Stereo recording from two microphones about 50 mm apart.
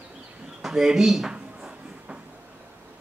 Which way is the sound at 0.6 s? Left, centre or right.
Centre.